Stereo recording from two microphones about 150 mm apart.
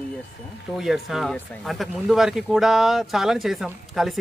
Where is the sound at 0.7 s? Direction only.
Centre (ahead or behind).